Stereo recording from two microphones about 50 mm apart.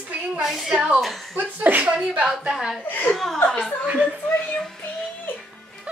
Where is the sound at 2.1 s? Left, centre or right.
Right.